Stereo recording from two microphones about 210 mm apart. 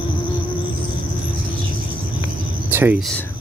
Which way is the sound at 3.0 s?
Centre (ahead or behind).